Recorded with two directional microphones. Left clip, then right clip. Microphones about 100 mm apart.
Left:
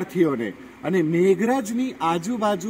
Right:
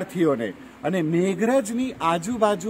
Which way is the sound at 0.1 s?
45° right (ahead or behind).